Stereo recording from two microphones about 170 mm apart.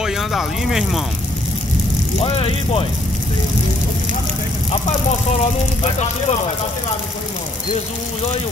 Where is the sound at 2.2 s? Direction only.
35° left (ahead or behind).